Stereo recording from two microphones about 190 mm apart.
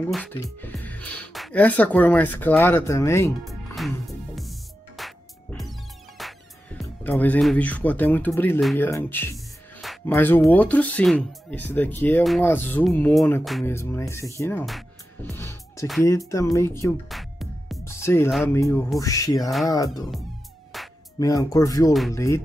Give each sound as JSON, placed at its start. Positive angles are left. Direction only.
{"t": 0.1, "sound": "speech", "side_deg": 10}
{"t": 3.4, "sound": "music", "side_deg": 0}
{"t": 8.7, "sound": "speech", "side_deg": 10}
{"t": 9.8, "sound": "music", "side_deg": 0}
{"t": 10.1, "sound": "speech", "side_deg": 10}
{"t": 13.7, "sound": "speech", "side_deg": 15}
{"t": 14.7, "sound": "music", "side_deg": 0}
{"t": 15.3, "sound": "music", "side_deg": 15}
{"t": 16.0, "sound": "speech", "side_deg": 15}
{"t": 17.1, "sound": "music", "side_deg": 0}
{"t": 18.0, "sound": "speech", "side_deg": 15}
{"t": 20.7, "sound": "music", "side_deg": 0}
{"t": 21.2, "sound": "speech", "side_deg": 20}